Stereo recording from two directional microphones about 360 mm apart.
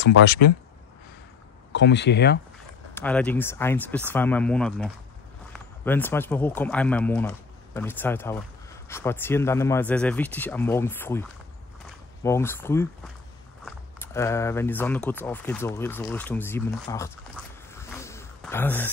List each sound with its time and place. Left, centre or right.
0.0 s speech: left
1.7 s speech: left
2.9 s speech: centre
17.7 s a sound: centre